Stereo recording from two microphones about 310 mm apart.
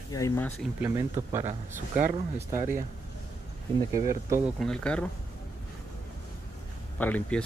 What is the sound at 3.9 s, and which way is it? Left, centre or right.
Speech, centre.